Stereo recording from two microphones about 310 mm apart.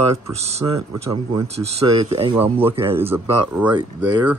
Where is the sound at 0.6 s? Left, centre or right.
Centre.